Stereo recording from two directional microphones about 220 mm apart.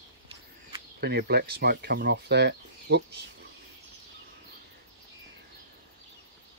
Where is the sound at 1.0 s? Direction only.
45° right (ahead or behind).